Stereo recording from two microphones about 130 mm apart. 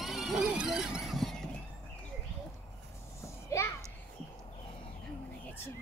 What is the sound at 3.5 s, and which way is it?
Children playing, 25° left (ahead or behind).